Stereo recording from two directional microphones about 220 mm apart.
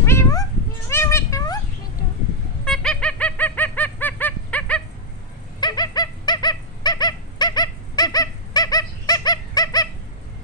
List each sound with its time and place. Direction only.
0.0 s cat: 10° left (ahead or behind)
2.6 s fowl: 5° left (ahead or behind)
5.6 s dog: 20° left (ahead or behind)